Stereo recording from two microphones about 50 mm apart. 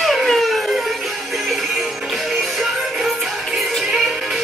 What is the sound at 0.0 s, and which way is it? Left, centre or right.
Music, centre.